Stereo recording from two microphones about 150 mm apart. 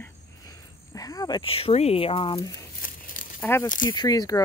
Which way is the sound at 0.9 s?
25° left (ahead or behind).